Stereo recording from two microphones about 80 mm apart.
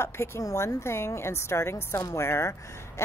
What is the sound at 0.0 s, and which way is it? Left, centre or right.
A woman's voice, left.